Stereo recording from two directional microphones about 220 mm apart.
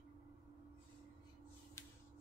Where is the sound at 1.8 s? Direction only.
15° left (ahead or behind).